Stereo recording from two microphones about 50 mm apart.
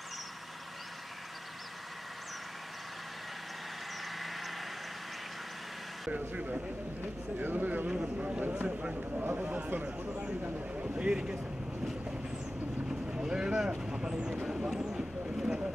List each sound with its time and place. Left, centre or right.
4.2 s vehicle: centre
6.1 s speech: right
7.0 s speech: right
7.9 s speech: centre
8.3 s speech: right
13.1 s vehicle: centre
14.8 s a sound: centre